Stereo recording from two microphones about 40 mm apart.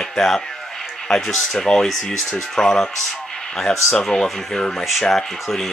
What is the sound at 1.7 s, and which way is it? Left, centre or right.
Speech, left.